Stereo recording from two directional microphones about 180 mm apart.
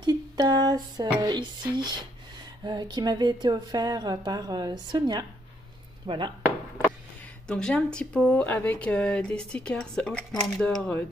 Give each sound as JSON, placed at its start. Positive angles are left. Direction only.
{"t": 0.0, "sound": "a sound", "side_deg": -20}
{"t": 1.2, "sound": "speech", "side_deg": -25}
{"t": 7.4, "sound": "speech", "side_deg": 5}